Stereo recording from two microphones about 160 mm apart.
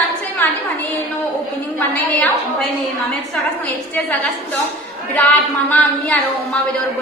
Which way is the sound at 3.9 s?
10° left (ahead or behind).